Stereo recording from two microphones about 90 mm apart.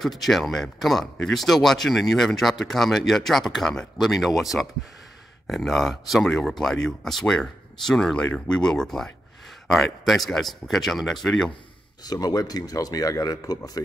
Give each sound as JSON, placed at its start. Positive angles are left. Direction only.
{"t": 0.0, "sound": "speech", "side_deg": 0}
{"t": 12.0, "sound": "speech", "side_deg": 45}